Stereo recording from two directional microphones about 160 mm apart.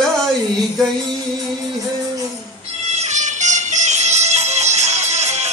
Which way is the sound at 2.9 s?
45° right (ahead or behind).